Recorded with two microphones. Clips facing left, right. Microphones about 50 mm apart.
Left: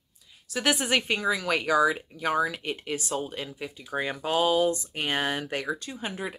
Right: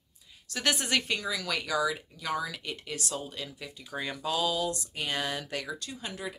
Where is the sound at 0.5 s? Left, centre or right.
Centre.